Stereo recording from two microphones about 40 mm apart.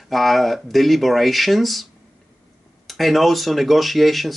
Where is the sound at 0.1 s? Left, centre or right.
Centre.